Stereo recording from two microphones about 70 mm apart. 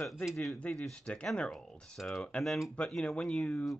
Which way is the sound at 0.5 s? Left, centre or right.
Centre.